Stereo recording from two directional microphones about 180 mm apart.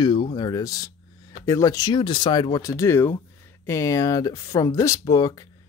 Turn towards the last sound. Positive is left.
turn(degrees=20)  # may be behind; listen again after turning